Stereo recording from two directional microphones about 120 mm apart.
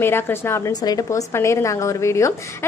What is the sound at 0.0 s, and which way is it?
A woman's voice, 20° left (ahead or behind).